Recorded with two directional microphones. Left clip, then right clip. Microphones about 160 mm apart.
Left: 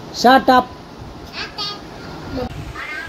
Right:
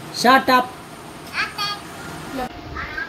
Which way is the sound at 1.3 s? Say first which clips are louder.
Right 3 dB; 60° right (ahead or behind).